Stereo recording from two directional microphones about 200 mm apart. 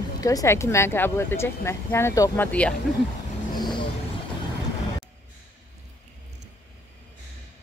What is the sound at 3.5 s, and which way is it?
Vehicle, 20° left (ahead or behind).